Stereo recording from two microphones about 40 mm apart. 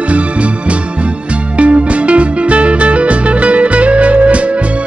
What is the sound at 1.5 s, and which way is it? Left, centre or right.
Music, right.